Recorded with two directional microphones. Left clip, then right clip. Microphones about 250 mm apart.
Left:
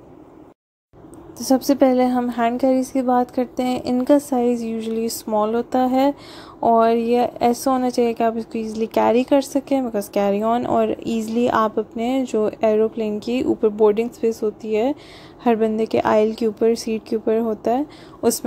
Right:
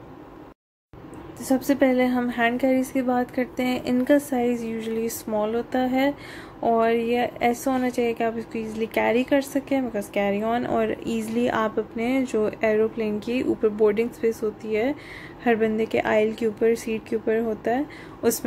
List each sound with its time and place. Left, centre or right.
1.4 s a woman's voice: left